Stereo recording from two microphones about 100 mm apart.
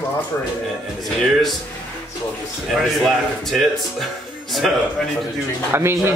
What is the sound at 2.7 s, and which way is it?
Speech, centre (ahead or behind).